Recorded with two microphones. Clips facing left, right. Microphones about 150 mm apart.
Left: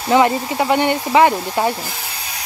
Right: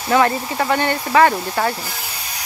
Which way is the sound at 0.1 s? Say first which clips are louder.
Left 2 dB; 15° left (ahead or behind).